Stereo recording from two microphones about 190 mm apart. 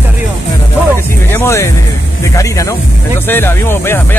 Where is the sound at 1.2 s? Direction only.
15° left (ahead or behind).